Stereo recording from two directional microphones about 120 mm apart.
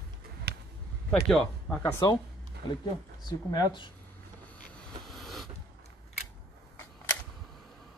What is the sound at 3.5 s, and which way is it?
Speech, 40° left (ahead or behind).